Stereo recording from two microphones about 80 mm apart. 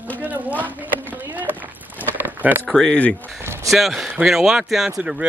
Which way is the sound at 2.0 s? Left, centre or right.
Right.